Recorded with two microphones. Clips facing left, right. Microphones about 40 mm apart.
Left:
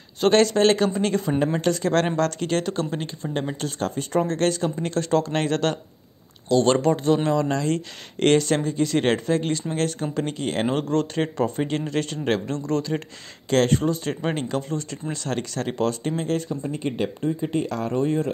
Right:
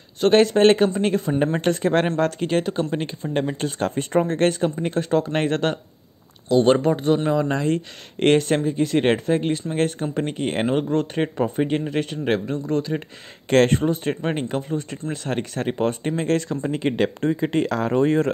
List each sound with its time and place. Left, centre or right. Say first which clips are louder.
0.3 s speech: right 3 dB; centre
0.9 s speech: right 2 dB; centre
1.4 s speech: right 2 dB; right
3.0 s speech: right 4 dB; right
4.2 s speech: right 2 dB; right
4.6 s speech: right 1 dB; centre
10.6 s speech: right 1 dB; centre
13.5 s speech: right 3 dB; right
16.4 s speech: right 4 dB; right